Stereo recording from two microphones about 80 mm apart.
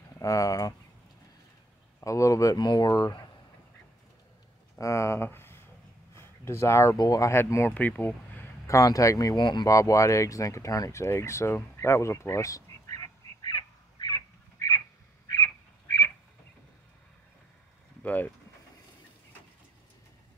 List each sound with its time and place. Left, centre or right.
0.2 s speech: left
2.0 s speech: left
2.5 s speech: left
2.9 s speech: left
4.7 s speech: left
6.1 s a sound: left
7.0 s speech: left
7.2 s speech: left
7.7 s speech: left
8.6 s speech: left
9.4 s speech: left
9.7 s speech: left
18.0 s speech: left